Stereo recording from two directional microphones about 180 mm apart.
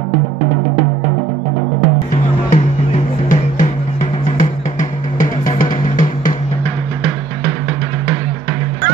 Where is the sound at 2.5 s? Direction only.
45° left (ahead or behind).